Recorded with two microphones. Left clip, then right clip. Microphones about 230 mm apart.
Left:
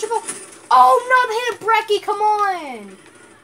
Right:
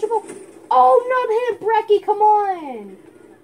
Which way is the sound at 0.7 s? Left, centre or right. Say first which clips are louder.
Left 2 dB; centre.